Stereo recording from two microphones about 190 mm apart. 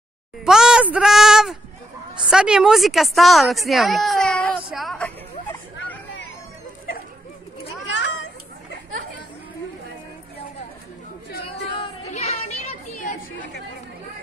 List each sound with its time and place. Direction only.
0.5 s a sound: 5° right (ahead or behind)
2.3 s a woman's voice: 5° right (ahead or behind)
12.1 s children playing: 35° left (ahead or behind)
13.4 s chatter: 65° left (ahead or behind)